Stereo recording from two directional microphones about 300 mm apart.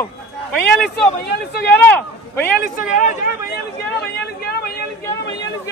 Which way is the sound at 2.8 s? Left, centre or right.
Left.